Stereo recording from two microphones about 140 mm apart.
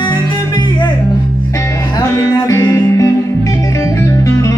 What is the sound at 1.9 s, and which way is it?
Music, 20° left (ahead or behind).